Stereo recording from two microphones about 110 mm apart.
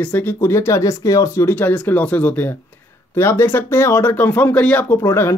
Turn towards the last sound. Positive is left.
turn(degrees=20)  # may be behind; listen again after turning